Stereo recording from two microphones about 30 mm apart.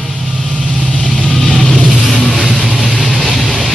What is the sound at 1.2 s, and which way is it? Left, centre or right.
Vehicle, centre.